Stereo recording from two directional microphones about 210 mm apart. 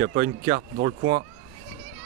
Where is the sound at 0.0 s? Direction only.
55° right (ahead or behind).